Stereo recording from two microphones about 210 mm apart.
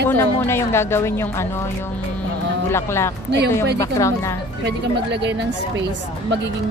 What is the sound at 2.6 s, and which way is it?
Speech, 10° left (ahead or behind).